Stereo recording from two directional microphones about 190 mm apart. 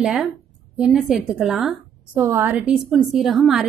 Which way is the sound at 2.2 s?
15° right (ahead or behind).